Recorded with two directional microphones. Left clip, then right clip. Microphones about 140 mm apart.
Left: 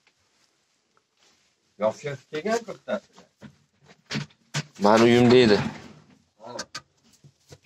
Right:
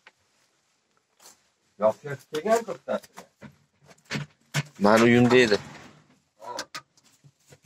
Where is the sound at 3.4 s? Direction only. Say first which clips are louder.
Right 1 dB; 40° left (ahead or behind).